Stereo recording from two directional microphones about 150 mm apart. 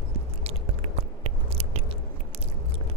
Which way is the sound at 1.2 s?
40° right (ahead or behind).